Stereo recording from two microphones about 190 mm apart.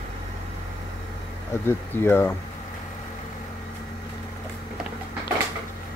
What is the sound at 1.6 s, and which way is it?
Speech, 10° left (ahead or behind).